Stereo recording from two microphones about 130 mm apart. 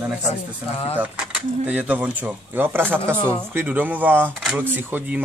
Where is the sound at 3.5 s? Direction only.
15° right (ahead or behind).